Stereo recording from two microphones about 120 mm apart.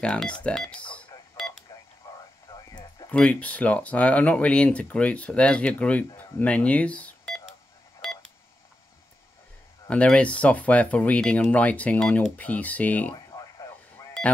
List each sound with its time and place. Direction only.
0.0 s speech: 5° left (ahead or behind)
2.0 s radio: 25° left (ahead or behind)
2.5 s a sound: 20° left (ahead or behind)
3.1 s speech: 10° left (ahead or behind)
9.8 s speech: 10° left (ahead or behind)